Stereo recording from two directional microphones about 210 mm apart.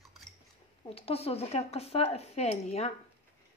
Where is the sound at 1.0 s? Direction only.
30° left (ahead or behind).